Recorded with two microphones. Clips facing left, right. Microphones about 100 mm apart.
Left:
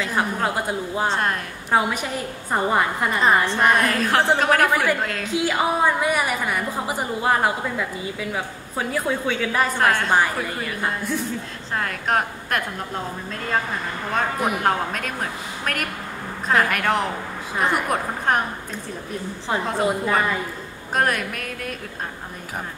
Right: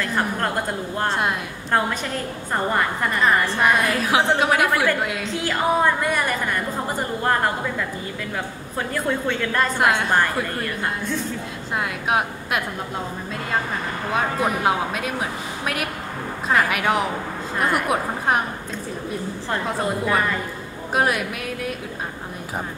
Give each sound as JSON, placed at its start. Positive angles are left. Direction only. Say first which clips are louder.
{"t": 0.0, "sound": "a woman's voice", "louder": "even", "side_deg": 5}
{"t": 3.2, "sound": "a woman's voice", "louder": "left 1 dB", "side_deg": 20}
{"t": 3.5, "sound": "a woman's voice", "louder": "left 1 dB", "side_deg": -5}
{"t": 5.3, "sound": "a woman's voice", "louder": "even", "side_deg": 5}
{"t": 9.8, "sound": "a woman's voice", "louder": "even", "side_deg": -5}
{"t": 11.7, "sound": "a woman's voice", "louder": "even", "side_deg": -10}
{"t": 14.1, "sound": "a woman's voice", "louder": "right 1 dB", "side_deg": 5}
{"t": 14.6, "sound": "a woman's voice", "louder": "right 1 dB", "side_deg": -10}
{"t": 19.5, "sound": "a woman's voice", "louder": "left 2 dB", "side_deg": 5}